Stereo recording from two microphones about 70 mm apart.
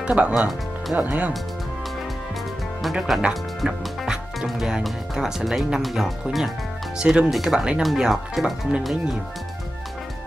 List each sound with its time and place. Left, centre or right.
0.0 s speech: right
0.3 s speech: centre
0.9 s speech: right
2.8 s speech: centre